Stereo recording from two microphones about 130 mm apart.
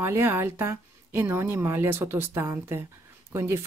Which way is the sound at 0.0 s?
20° right (ahead or behind).